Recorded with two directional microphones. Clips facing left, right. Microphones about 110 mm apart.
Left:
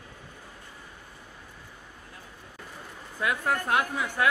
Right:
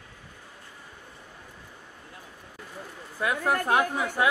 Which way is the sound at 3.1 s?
15° right (ahead or behind).